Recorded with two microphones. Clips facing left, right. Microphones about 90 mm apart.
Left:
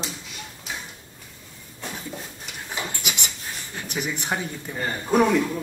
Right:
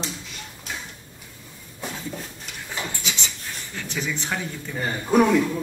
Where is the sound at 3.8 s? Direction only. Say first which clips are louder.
Even; 15° left (ahead or behind).